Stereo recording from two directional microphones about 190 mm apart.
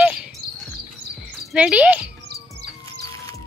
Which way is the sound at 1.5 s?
5° right (ahead or behind).